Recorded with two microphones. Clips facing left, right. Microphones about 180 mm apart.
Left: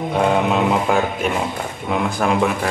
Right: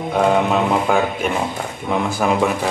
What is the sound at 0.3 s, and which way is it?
A man's voice, centre (ahead or behind).